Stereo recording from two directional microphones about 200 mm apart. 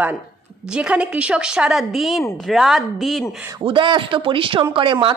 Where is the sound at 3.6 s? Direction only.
25° right (ahead or behind).